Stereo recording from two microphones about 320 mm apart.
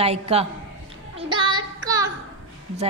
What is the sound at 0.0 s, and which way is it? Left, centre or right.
Speech, centre.